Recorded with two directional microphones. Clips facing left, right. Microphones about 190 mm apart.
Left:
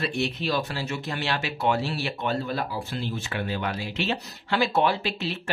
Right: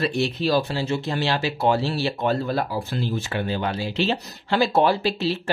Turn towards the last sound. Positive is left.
turn(degrees=-35)  # may be behind; listen again after turning